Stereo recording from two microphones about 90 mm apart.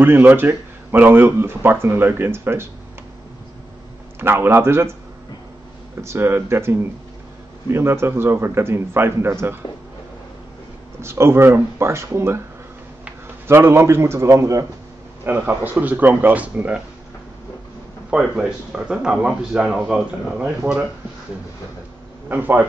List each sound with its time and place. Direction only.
0.0 s speech: 20° right (ahead or behind)
4.2 s speech: 25° right (ahead or behind)
5.9 s speech: 30° right (ahead or behind)
11.0 s speech: 30° right (ahead or behind)
13.5 s a man's voice: 25° right (ahead or behind)
15.2 s speech: 20° right (ahead or behind)
18.1 s speech: 10° right (ahead or behind)
22.3 s speech: 20° right (ahead or behind)